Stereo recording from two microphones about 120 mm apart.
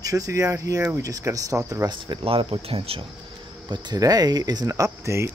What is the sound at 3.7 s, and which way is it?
Speech, 35° right (ahead or behind).